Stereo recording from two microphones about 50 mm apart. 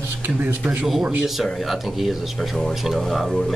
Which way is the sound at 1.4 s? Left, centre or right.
Centre.